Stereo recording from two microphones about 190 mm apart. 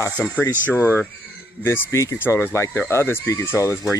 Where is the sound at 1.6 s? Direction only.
15° left (ahead or behind).